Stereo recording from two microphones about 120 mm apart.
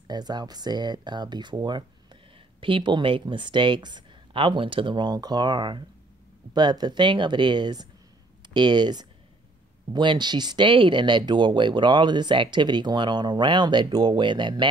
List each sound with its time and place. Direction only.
0.1 s speech: 35° right (ahead or behind)